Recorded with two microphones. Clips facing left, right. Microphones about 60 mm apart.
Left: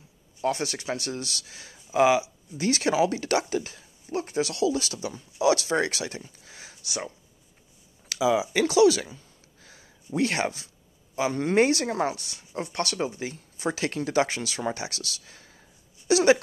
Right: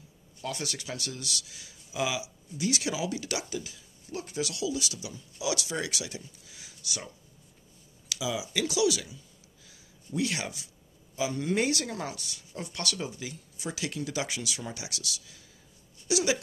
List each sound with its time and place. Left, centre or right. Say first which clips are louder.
0.4 s speech: left 8 dB; left
9.7 s a sound: left 4 dB; left
11.1 s speech: left 6 dB; left